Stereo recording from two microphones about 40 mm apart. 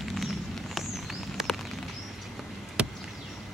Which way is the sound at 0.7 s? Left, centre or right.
Centre.